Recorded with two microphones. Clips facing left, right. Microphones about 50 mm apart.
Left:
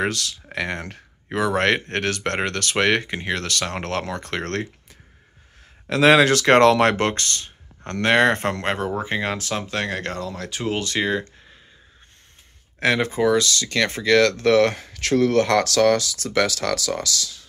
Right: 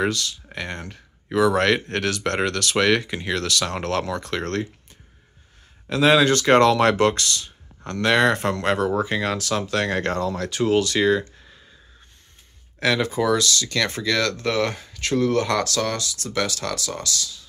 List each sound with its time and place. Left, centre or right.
0.1 s speech: left
1.4 s speech: left
5.9 s speech: left
6.8 s speech: left; by 9.8 s centre
9.8 s speech: centre
10.5 s speech: centre
12.7 s speech: left
14.3 s speech: left